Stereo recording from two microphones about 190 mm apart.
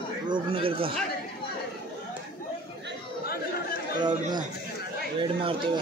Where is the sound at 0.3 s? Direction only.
25° right (ahead or behind).